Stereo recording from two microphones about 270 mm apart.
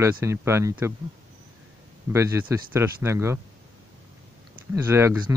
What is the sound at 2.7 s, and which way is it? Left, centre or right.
Speech, centre.